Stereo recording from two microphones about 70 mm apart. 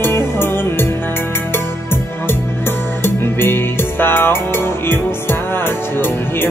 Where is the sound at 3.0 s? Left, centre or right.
Left.